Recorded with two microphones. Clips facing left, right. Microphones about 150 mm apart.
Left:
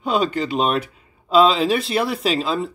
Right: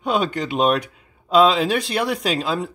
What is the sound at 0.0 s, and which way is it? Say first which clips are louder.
Speech: left 1 dB; centre (ahead or behind).